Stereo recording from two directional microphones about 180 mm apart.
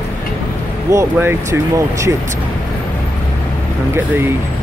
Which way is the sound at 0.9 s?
15° right (ahead or behind).